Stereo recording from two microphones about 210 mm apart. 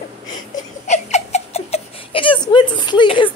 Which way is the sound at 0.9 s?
30° left (ahead or behind).